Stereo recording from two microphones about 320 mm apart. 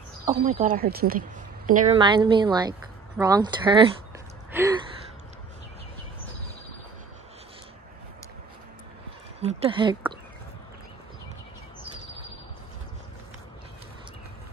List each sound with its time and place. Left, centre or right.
0.5 s a woman's voice: right
4.5 s gasp: centre
9.4 s a woman's voice: centre